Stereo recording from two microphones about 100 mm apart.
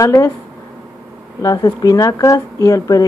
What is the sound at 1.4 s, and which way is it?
A woman's voice, 40° left (ahead or behind).